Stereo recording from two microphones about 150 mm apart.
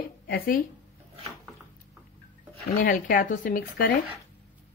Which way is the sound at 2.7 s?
70° left (ahead or behind).